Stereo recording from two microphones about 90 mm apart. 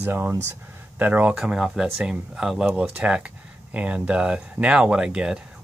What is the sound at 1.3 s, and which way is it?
Speech, 10° right (ahead or behind).